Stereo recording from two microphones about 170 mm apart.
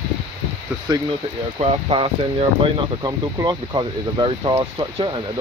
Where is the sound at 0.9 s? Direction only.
25° right (ahead or behind).